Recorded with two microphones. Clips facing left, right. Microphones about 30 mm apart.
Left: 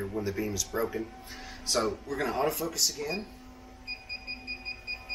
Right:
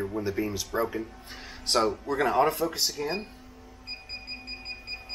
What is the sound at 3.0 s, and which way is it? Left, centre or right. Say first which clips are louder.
Speech: right 3 dB; centre.